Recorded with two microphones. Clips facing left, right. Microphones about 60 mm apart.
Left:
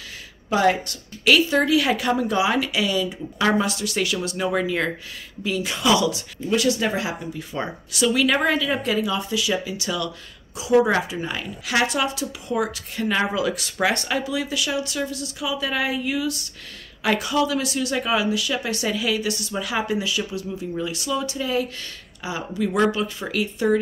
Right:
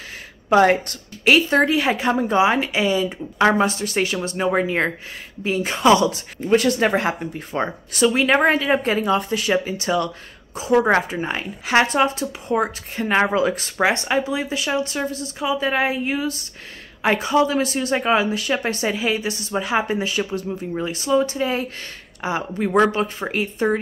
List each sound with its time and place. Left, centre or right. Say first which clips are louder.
0.5 s speech: right 5 dB; right